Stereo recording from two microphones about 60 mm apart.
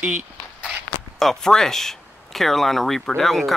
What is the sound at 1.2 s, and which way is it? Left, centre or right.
Speech, centre.